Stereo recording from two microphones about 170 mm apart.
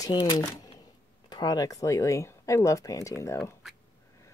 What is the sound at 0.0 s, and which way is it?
A woman's voice, 25° left (ahead or behind).